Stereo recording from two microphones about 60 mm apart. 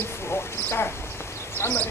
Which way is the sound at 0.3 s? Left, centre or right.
Left.